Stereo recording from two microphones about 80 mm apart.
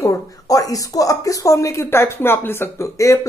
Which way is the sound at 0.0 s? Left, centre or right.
Left.